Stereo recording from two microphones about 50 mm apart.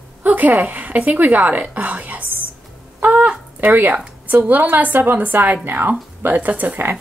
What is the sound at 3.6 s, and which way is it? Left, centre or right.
A woman's voice, right.